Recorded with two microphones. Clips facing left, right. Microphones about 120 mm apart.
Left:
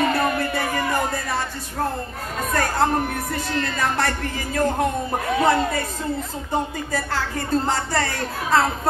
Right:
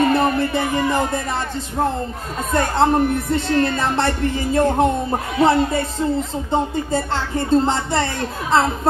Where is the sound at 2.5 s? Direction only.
25° right (ahead or behind).